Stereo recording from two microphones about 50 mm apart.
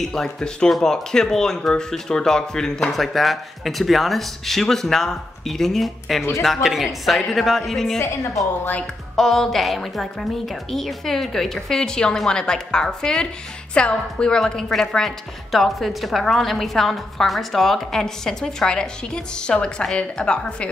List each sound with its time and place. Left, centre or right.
0.0 s speech: centre
2.9 s speech: centre
8.0 s a woman's voice: left
9.1 s a woman's voice: centre